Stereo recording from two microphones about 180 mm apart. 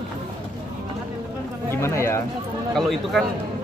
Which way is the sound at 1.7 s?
15° left (ahead or behind).